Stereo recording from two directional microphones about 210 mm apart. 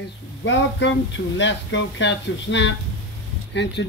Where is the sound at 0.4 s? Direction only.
60° left (ahead or behind).